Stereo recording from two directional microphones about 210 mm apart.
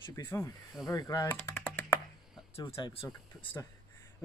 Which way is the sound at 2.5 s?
20° left (ahead or behind).